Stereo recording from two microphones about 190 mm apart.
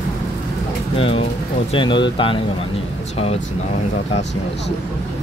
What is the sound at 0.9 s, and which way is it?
Speech, 30° left (ahead or behind).